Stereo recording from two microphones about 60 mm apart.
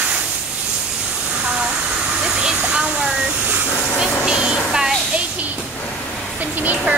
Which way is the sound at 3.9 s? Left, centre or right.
Centre.